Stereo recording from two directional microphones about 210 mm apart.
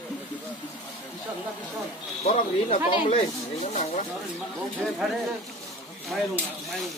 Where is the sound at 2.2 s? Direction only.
25° left (ahead or behind).